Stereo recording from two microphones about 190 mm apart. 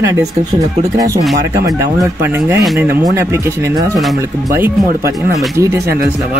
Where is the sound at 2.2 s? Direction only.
10° right (ahead or behind).